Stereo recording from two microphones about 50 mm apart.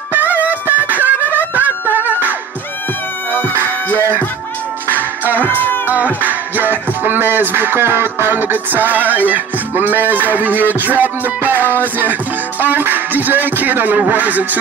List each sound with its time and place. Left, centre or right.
0.1 s music: right
4.8 s music: right
5.5 s music: left
6.2 s music: right